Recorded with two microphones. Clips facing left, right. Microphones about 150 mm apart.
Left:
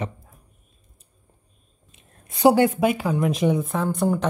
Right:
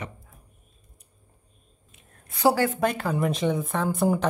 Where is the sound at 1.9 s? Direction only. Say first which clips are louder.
Left 2 dB; 20° left (ahead or behind).